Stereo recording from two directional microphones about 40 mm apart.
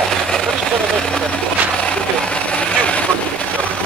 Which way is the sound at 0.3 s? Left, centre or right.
Centre.